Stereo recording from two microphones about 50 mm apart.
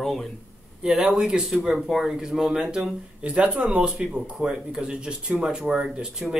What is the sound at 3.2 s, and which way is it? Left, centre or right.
Speech, right.